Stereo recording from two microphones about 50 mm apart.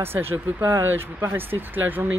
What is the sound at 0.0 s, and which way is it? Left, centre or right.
Speech, right.